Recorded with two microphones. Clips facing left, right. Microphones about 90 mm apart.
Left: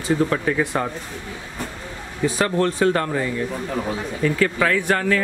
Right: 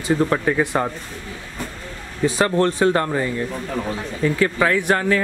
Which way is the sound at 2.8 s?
30° right (ahead or behind).